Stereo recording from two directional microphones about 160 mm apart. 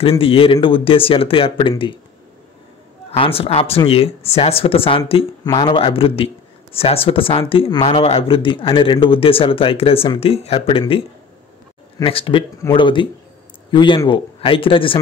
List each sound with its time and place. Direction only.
0.0 s speech: 35° left (ahead or behind)
3.1 s speech: 35° left (ahead or behind)